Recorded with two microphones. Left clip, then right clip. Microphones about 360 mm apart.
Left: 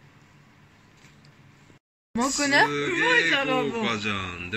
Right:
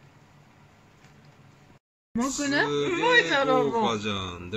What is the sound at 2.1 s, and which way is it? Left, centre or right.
Speech, left.